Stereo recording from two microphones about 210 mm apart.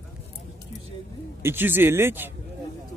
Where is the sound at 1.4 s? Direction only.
10° right (ahead or behind).